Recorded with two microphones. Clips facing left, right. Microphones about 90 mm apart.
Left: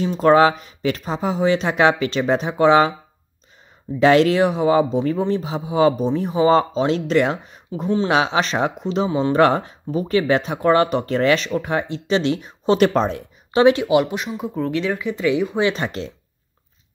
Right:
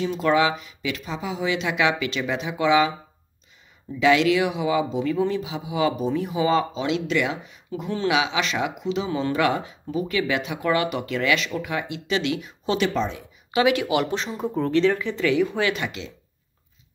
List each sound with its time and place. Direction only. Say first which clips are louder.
0.0 s speech: left 6 dB; 40° left (ahead or behind)
4.0 s speech: left 5 dB; 40° left (ahead or behind)
13.5 s speech: left 6 dB; 35° left (ahead or behind)
14.1 s speech: left 1 dB; 5° left (ahead or behind)
15.7 s speech: left 4 dB; 40° left (ahead or behind)